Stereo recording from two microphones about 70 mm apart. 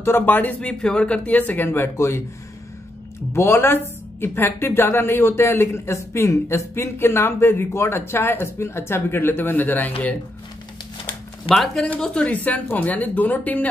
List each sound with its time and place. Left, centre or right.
0.0 s speech: left
3.3 s speech: left
11.4 s a woman's voice: centre
12.4 s speech: left